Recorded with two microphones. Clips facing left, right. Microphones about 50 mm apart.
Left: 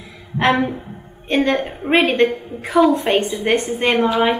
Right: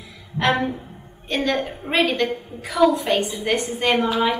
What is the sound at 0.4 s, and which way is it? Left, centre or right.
A woman's voice, left.